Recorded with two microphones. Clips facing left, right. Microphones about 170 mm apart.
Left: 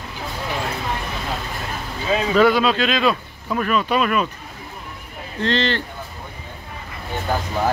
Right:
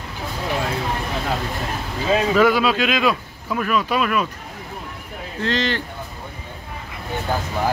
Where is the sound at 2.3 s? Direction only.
10° right (ahead or behind).